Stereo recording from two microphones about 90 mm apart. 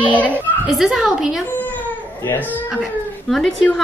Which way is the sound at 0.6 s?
5° right (ahead or behind).